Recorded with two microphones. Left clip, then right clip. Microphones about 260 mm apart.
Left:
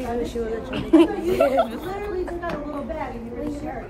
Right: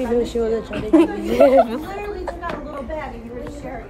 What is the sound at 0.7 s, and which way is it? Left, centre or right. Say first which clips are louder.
Speech: even; centre.